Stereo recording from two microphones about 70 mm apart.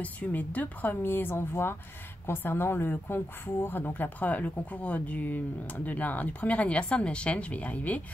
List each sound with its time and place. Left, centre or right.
0.0 s a woman's voice: left